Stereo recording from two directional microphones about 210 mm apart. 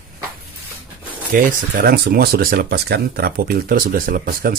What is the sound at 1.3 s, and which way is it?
A man's voice, 40° right (ahead or behind).